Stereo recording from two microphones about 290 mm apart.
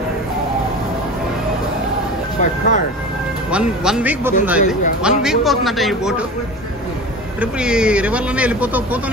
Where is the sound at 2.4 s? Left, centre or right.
Left.